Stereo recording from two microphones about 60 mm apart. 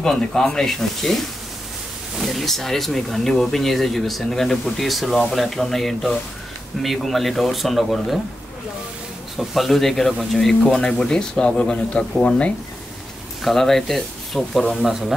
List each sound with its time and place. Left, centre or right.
0.0 s speech: centre
9.4 s speech: centre
13.4 s speech: centre